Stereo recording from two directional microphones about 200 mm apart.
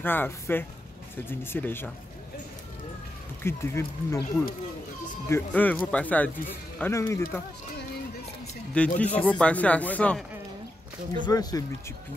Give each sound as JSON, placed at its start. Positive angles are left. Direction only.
{"t": 0.0, "sound": "speech", "side_deg": 10}
{"t": 3.4, "sound": "speech", "side_deg": 15}
{"t": 5.3, "sound": "speech", "side_deg": 10}
{"t": 8.7, "sound": "speech", "side_deg": 5}
{"t": 11.2, "sound": "speech", "side_deg": 20}